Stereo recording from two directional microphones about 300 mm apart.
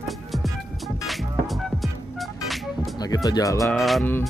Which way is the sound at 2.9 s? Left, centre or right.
Centre.